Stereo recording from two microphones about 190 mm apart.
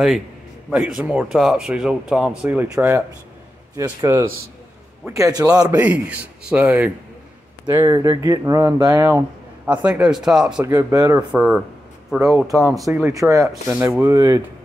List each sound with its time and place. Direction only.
0.7 s speech: 5° right (ahead or behind); by 5.7 s 20° right (ahead or behind)
5.7 s speech: 10° right (ahead or behind)
7.6 s speech: 20° right (ahead or behind)
11.1 s speech: 5° right (ahead or behind)
12.8 s speech: 15° right (ahead or behind)